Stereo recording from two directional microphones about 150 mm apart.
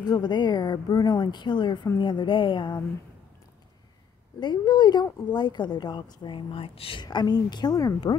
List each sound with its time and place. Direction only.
0.0 s a woman's voice: 30° left (ahead or behind)
4.4 s a woman's voice: 30° left (ahead or behind)